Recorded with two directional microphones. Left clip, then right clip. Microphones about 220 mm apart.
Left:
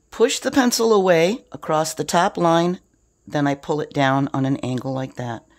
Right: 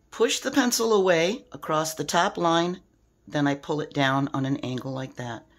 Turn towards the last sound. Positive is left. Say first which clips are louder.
# left 6 dB
turn(degrees=35)  # may be behind; listen again after turning